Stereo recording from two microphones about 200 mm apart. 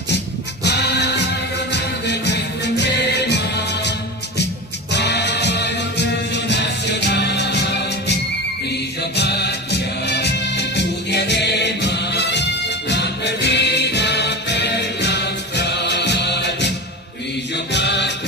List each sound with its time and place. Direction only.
0.7 s music: 55° left (ahead or behind)
4.9 s music: 55° left (ahead or behind)
17.7 s music: 60° left (ahead or behind)